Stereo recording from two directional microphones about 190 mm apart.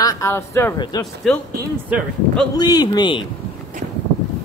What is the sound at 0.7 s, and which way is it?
Speech, 25° left (ahead or behind).